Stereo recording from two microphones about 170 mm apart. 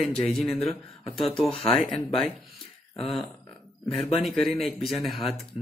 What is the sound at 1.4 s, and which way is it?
Speech, 35° left (ahead or behind).